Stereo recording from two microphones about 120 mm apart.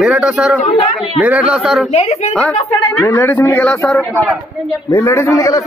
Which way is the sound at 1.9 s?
65° left (ahead or behind).